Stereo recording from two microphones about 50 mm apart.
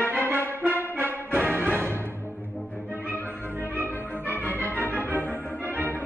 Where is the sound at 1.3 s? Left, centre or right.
Right.